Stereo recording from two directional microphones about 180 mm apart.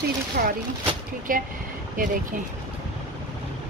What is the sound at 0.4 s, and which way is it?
A woman's voice, 50° right (ahead or behind).